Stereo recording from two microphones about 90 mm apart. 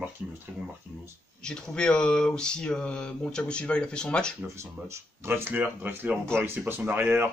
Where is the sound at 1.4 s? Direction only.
10° left (ahead or behind).